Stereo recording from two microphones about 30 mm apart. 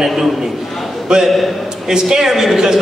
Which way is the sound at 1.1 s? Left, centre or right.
Right.